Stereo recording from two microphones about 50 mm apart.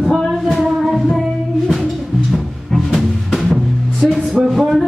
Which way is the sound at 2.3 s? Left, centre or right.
Centre.